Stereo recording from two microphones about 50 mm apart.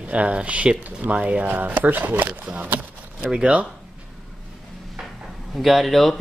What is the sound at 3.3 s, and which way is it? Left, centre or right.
Speech, centre.